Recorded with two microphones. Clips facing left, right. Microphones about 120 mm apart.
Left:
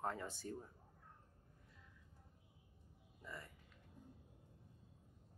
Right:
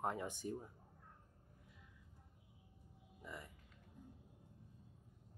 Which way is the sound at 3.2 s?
15° right (ahead or behind).